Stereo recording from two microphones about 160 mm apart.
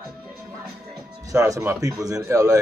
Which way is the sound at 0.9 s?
20° right (ahead or behind).